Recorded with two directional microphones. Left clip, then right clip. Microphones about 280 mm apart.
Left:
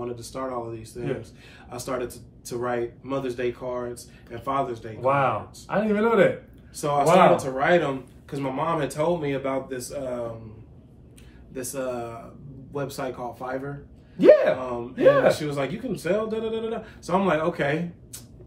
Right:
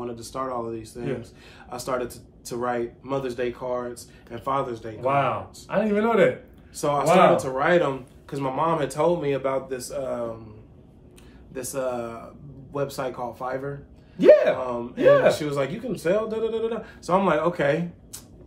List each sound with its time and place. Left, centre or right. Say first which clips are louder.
0.0 s speech: right 1 dB; centre
5.0 s speech: left 1 dB; centre
6.7 s speech: left 1 dB; centre
11.5 s speech: right 2 dB; centre
14.1 s speech: right 1 dB; centre
15.3 s speech: right 2 dB; centre